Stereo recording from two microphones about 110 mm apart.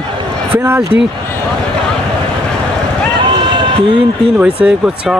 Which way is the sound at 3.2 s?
50° right (ahead or behind).